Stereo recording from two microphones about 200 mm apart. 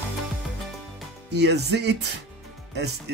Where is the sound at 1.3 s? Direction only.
55° right (ahead or behind).